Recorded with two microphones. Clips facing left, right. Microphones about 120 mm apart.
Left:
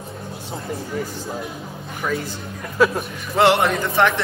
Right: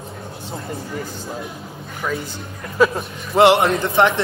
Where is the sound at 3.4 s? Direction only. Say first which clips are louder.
Right 3 dB; 25° right (ahead or behind).